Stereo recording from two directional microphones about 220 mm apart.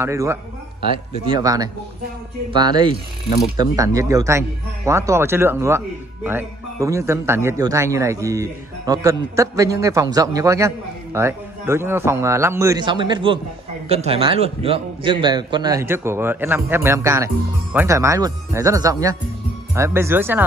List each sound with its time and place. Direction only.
0.0 s speech: 15° right (ahead or behind)